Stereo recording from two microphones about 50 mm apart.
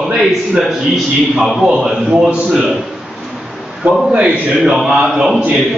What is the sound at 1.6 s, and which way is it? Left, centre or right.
Speech, centre.